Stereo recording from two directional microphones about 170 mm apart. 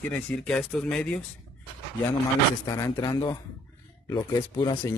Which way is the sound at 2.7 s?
20° left (ahead or behind).